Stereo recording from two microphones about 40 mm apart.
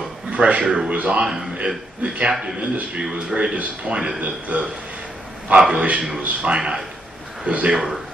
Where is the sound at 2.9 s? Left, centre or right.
Right.